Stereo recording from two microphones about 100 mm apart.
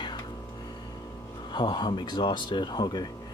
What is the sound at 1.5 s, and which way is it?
Speech, 45° left (ahead or behind).